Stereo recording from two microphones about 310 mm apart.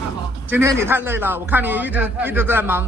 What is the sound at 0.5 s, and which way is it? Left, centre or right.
A man's voice, centre.